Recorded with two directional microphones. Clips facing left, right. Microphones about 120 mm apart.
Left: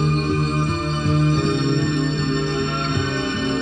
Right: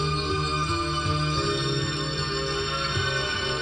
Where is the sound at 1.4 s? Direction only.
50° left (ahead or behind).